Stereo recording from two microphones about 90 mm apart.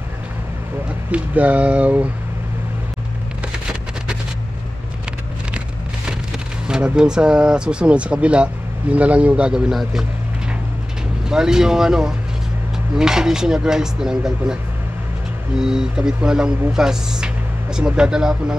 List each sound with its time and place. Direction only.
1.1 s speech: 15° right (ahead or behind)
6.7 s speech: 10° right (ahead or behind)
11.2 s speech: 5° right (ahead or behind)
15.6 s speech: 5° right (ahead or behind)